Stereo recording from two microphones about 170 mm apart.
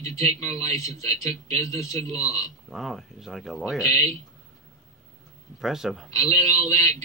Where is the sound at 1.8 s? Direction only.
20° left (ahead or behind).